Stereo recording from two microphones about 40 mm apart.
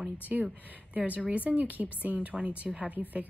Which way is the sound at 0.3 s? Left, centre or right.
Right.